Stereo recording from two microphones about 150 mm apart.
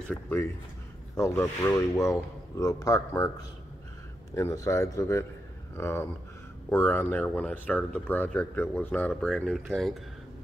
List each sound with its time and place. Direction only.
0.1 s speech: 15° left (ahead or behind)